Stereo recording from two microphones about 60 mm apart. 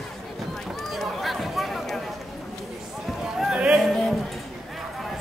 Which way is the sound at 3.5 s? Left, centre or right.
Centre.